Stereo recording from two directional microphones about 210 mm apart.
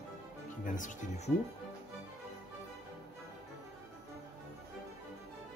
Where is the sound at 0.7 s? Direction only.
35° left (ahead or behind).